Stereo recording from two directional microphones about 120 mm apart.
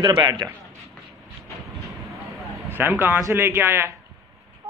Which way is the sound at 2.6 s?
15° right (ahead or behind).